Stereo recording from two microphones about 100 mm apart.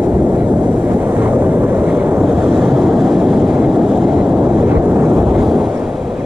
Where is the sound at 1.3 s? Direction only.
20° right (ahead or behind).